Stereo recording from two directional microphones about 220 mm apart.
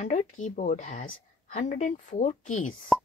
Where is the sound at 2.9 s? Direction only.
Centre (ahead or behind).